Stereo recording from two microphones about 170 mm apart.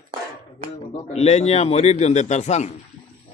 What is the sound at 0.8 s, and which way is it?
Speech, 40° left (ahead or behind).